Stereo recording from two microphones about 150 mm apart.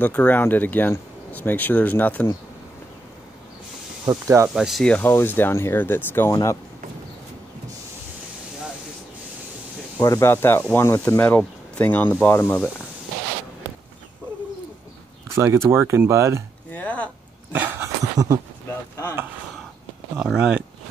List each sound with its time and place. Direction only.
0.0 s speech: 10° left (ahead or behind)
4.0 s speech: 25° right (ahead or behind)
4.6 s speech: centre (ahead or behind)
4.9 s speech: 15° left (ahead or behind)
9.9 s speech: 20° left (ahead or behind)
15.3 s speech: 20° right (ahead or behind)
16.7 s a sound: 10° left (ahead or behind)
17.5 s dog: 10° right (ahead or behind)
18.1 s speech: 25° right (ahead or behind)
20.2 s speech: 5° right (ahead or behind)